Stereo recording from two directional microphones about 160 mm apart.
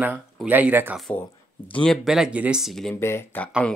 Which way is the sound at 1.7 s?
5° left (ahead or behind).